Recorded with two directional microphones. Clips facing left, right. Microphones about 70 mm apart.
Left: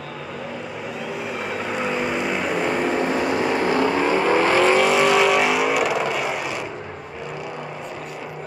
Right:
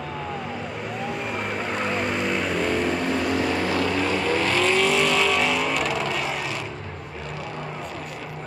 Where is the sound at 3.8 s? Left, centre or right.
Left; by 6.7 s centre.